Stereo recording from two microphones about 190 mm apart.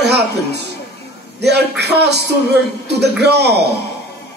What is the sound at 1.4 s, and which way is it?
A man's voice, 60° right (ahead or behind).